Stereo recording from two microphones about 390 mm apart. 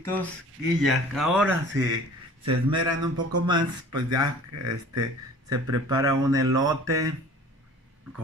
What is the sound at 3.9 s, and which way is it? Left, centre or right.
Speech, right.